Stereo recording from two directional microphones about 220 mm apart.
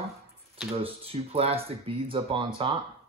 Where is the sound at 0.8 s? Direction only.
25° right (ahead or behind).